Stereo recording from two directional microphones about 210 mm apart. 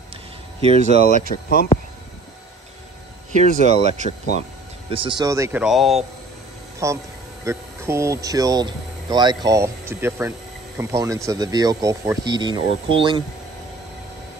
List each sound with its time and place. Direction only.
0.6 s speech: 30° right (ahead or behind)
3.3 s speech: 35° right (ahead or behind)
4.9 s speech: 25° right (ahead or behind); by 6.0 s centre (ahead or behind)
6.8 s speech: 15° right (ahead or behind)